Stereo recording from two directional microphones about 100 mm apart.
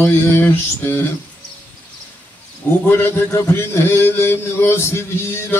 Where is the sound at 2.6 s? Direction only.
20° left (ahead or behind).